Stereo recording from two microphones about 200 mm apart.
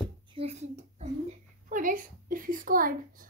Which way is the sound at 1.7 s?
40° right (ahead or behind).